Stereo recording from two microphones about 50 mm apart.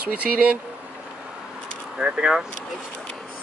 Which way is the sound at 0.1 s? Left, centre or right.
Right.